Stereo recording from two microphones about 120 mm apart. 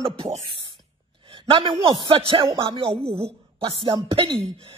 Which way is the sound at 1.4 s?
45° right (ahead or behind).